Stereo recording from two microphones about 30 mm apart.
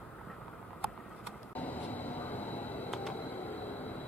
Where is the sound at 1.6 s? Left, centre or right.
Left.